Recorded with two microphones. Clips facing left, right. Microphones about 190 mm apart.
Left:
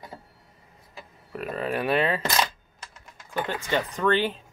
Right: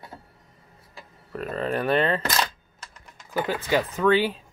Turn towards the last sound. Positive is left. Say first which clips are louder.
# right 3 dB
turn(degrees=-5)  # may be behind; listen again after turning